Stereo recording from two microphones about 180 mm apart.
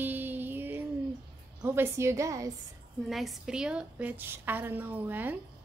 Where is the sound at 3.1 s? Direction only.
Centre (ahead or behind).